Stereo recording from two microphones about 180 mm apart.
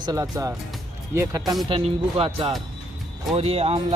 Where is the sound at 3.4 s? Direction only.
35° right (ahead or behind).